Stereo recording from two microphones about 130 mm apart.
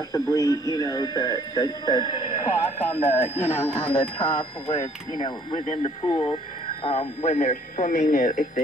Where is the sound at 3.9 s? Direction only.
40° left (ahead or behind).